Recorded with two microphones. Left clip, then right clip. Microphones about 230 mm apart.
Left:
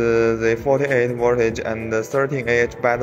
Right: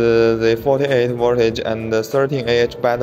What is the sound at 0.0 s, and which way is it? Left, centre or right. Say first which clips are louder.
A man's voice: right 3 dB; centre.